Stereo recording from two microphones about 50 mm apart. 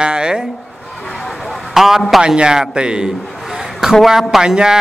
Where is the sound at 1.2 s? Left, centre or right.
Centre.